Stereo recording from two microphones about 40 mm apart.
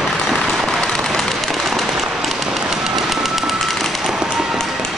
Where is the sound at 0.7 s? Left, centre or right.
Centre.